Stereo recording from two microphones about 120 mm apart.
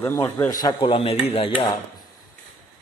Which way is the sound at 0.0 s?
25° left (ahead or behind).